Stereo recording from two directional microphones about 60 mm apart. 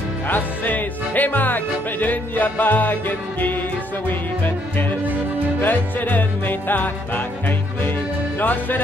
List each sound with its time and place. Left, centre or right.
0.3 s music: left
5.6 s music: left